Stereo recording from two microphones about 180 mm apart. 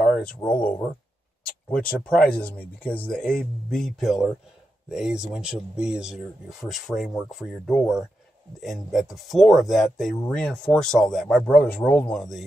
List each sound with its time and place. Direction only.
0.0 s speech: 5° left (ahead or behind)